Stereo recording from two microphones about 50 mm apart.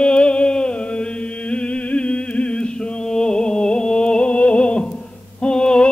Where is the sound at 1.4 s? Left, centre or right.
Left.